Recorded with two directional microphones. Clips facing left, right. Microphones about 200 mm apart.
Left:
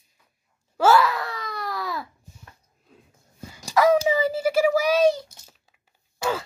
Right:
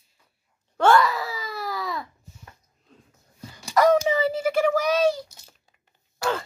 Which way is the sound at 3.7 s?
5° left (ahead or behind).